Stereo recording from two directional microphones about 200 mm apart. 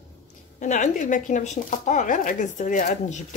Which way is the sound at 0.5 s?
40° left (ahead or behind).